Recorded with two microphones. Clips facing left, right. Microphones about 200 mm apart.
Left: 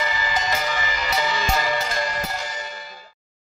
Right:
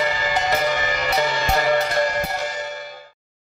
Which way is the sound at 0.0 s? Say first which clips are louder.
Right 4 dB; 60° right (ahead or behind).